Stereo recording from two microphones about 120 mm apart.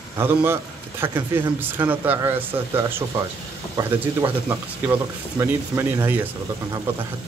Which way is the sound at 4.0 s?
20° right (ahead or behind).